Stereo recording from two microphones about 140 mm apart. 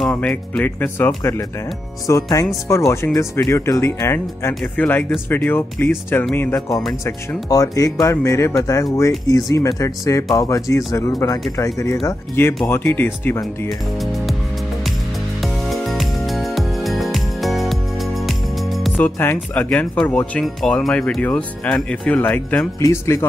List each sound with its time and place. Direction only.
0.0 s speech: 5° left (ahead or behind)
15.4 s music: centre (ahead or behind)
18.9 s speech: 15° left (ahead or behind)